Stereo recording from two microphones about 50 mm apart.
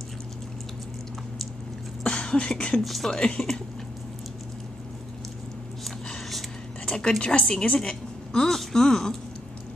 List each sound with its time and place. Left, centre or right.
2.0 s a sound: centre
2.8 s speech: centre
3.1 s a woman's voice: centre
7.0 s a woman's voice: centre